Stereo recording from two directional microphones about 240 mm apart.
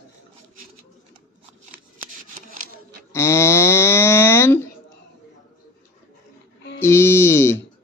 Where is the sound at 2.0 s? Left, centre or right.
Right.